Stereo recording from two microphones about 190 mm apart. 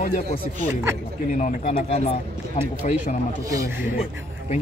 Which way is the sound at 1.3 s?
40° left (ahead or behind).